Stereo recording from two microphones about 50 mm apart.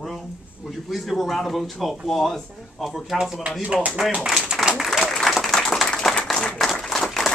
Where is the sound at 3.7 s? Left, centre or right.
Right.